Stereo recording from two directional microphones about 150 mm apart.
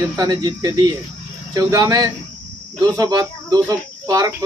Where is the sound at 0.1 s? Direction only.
25° right (ahead or behind).